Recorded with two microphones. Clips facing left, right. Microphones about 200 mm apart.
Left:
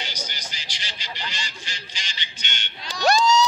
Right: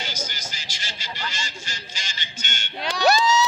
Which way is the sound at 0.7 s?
45° right (ahead or behind).